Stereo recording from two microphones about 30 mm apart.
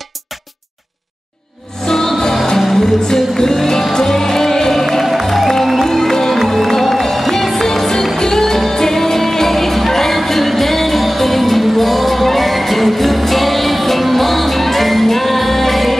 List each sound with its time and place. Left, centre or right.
1.9 s music: centre
5.9 s music: centre